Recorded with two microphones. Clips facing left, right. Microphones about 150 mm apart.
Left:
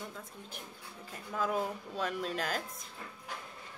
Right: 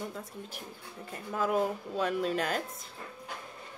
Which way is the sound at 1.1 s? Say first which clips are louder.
Right 4 dB; 5° right (ahead or behind).